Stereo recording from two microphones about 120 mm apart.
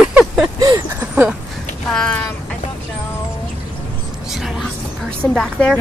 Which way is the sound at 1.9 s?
10° left (ahead or behind).